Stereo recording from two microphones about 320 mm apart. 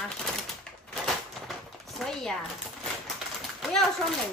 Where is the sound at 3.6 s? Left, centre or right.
Centre.